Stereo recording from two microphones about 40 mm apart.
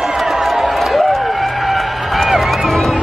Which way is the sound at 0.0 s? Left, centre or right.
Centre.